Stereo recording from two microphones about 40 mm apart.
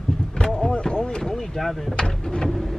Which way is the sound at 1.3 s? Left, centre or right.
Centre.